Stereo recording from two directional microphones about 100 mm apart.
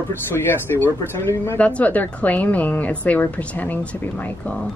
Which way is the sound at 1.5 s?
15° left (ahead or behind).